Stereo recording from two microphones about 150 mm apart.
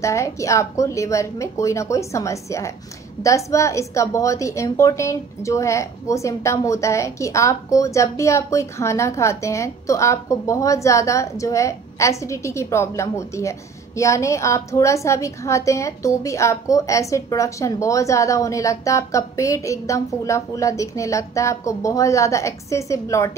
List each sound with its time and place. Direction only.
0.0 s a woman's voice: 20° left (ahead or behind)